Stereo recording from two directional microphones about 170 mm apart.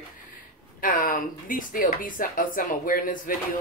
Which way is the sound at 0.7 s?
55° left (ahead or behind).